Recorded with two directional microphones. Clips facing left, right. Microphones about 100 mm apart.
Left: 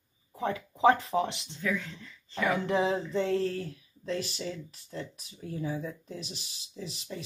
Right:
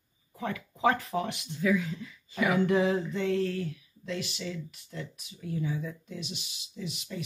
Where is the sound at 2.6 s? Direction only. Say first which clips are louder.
Right 2 dB; 30° left (ahead or behind).